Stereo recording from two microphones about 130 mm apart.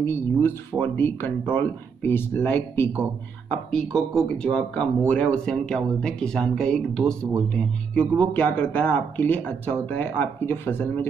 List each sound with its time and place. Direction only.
0.0 s speech: 20° left (ahead or behind)
3.4 s speech: 5° left (ahead or behind)